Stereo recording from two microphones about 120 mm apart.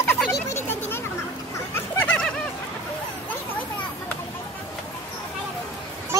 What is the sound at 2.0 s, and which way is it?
Bird, 10° left (ahead or behind).